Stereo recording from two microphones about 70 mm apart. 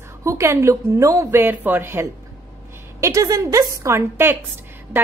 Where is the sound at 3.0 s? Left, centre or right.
Right.